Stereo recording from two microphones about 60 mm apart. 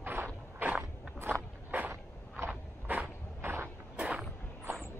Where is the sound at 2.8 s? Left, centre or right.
Right.